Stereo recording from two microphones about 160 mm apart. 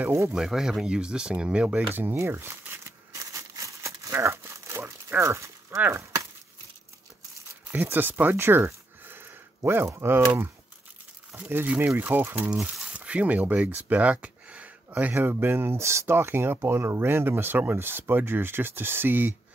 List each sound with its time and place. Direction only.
0.0 s speech: 15° right (ahead or behind)
0.3 s speech: 5° right (ahead or behind)
3.3 s crumpling: 20° right (ahead or behind)
7.7 s speech: 10° right (ahead or behind)